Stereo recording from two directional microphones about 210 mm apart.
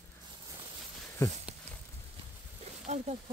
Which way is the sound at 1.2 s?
10° left (ahead or behind).